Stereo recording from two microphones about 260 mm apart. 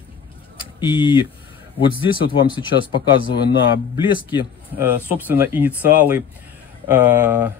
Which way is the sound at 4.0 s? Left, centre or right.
Centre.